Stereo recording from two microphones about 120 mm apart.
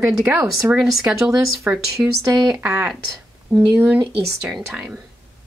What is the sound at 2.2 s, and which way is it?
A woman's voice, 30° right (ahead or behind).